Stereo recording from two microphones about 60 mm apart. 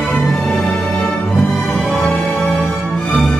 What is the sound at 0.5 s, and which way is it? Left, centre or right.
Music, centre.